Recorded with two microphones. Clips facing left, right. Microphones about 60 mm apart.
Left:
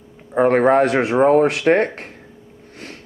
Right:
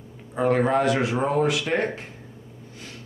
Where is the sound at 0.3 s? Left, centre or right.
Left.